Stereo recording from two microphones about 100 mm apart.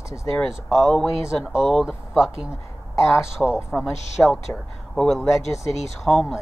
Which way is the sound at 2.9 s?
30° left (ahead or behind).